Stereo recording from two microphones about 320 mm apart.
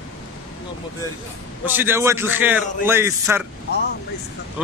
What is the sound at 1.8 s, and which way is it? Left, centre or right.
A man's voice, centre.